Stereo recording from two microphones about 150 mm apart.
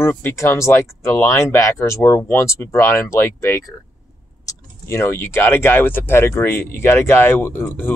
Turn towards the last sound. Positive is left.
turn(degrees=15)  # may be behind; listen again after turning